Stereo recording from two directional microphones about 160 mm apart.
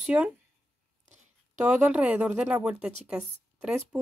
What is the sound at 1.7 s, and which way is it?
A woman's voice, 10° right (ahead or behind).